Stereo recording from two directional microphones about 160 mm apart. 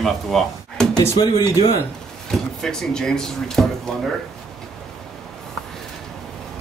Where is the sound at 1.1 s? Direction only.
25° left (ahead or behind).